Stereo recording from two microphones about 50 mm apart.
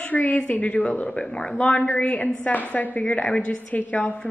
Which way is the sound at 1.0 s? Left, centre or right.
Centre.